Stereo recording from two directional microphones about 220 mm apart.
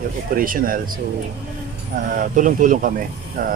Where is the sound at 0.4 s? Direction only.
40° right (ahead or behind).